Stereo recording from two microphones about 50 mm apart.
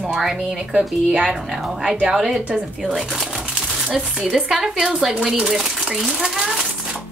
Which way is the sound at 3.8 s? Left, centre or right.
Centre.